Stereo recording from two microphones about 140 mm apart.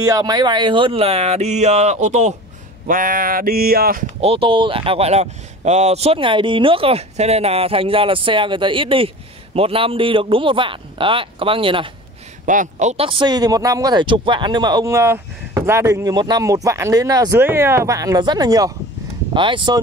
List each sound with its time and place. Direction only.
0.0 s speech: 25° right (ahead or behind); by 2.3 s 55° right (ahead or behind)
2.9 s a sound: 85° right
4.2 s speech: 45° right (ahead or behind)
12.4 s speech: 65° right (ahead or behind)
13.0 s speech: 35° right (ahead or behind)